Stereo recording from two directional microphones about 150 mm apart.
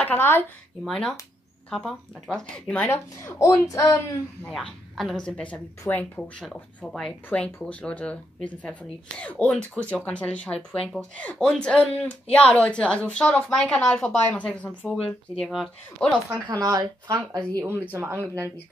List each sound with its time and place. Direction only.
0.0 s a woman's voice: 10° left (ahead or behind)
4.5 s a woman's voice: centre (ahead or behind)
16.4 s speech: 25° right (ahead or behind)